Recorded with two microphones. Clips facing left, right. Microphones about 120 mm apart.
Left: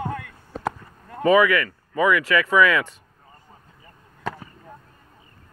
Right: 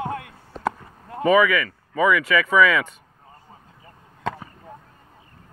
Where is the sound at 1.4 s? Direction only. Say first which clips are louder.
Even; centre (ahead or behind).